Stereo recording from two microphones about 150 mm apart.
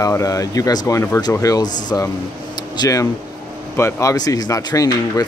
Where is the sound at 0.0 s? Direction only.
20° left (ahead or behind).